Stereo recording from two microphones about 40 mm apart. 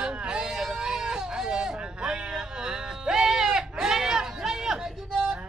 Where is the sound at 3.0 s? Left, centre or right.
Centre.